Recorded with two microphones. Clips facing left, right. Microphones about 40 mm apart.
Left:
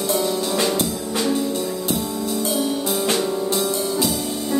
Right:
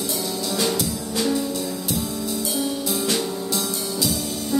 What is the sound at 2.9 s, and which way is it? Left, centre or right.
Music, left.